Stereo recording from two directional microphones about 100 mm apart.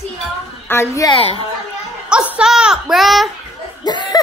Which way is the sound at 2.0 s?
10° right (ahead or behind).